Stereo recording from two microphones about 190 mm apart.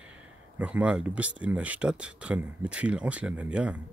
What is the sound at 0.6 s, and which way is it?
Speech, 5° right (ahead or behind).